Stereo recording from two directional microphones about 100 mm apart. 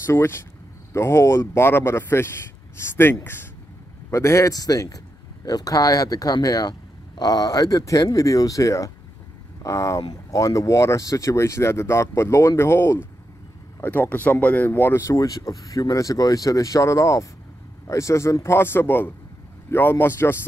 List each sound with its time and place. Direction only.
0.0 s speech: 25° left (ahead or behind)